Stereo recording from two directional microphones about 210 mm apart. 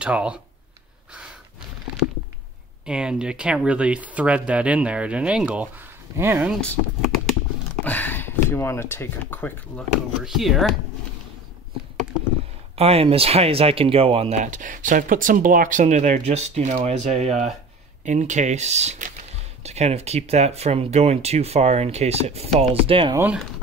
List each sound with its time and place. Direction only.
0.0 s speech: 5° right (ahead or behind)
2.8 s speech: 5° right (ahead or behind)
7.8 s a sound: 10° left (ahead or behind)
8.5 s speech: 10° left (ahead or behind)
12.7 s speech: 30° right (ahead or behind)
23.1 s speech: 10° right (ahead or behind)